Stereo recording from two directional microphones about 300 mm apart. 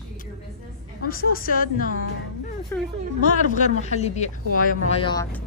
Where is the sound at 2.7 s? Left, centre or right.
Centre.